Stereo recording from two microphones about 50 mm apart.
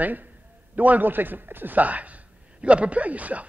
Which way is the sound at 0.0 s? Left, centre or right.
Right.